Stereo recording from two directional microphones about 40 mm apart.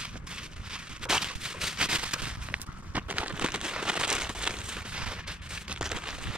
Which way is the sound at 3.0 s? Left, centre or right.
Right.